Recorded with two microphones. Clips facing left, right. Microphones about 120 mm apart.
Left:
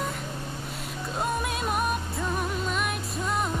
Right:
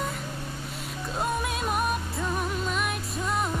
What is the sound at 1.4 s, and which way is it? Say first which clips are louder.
Music: even; centre (ahead or behind).